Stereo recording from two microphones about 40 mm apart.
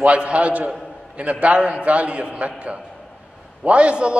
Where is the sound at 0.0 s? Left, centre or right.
Right.